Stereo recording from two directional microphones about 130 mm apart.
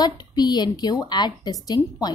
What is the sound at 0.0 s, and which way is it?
A woman's voice, 30° left (ahead or behind).